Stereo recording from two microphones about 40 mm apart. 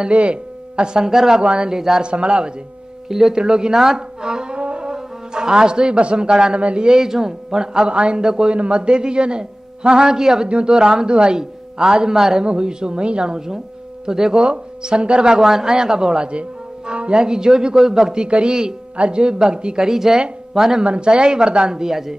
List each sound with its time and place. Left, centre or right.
0.1 s speech: right; by 1.4 s centre
1.4 s speech: right
1.8 s speech: centre
2.0 s speech: right
3.1 s speech: centre
20.8 s speech: right